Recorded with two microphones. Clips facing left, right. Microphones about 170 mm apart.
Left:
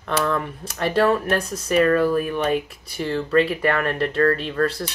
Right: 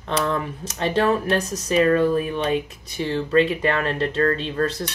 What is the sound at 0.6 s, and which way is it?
Speech, 20° right (ahead or behind).